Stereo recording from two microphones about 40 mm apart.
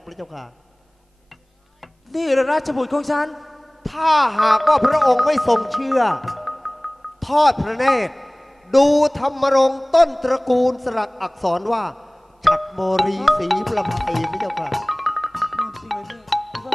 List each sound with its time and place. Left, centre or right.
0.0 s a man's voice: centre
1.8 s a man's voice: centre